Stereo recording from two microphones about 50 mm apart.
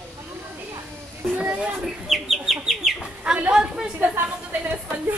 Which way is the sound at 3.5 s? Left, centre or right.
Centre.